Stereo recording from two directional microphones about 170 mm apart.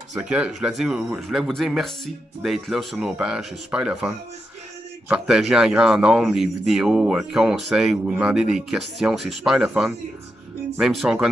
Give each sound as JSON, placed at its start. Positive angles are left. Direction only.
{"t": 0.2, "sound": "speech", "side_deg": -5}